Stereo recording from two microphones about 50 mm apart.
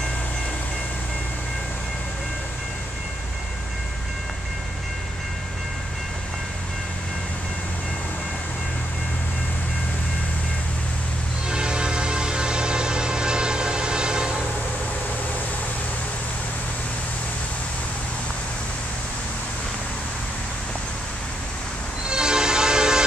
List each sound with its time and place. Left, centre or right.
11.4 s music: centre
22.1 s train: centre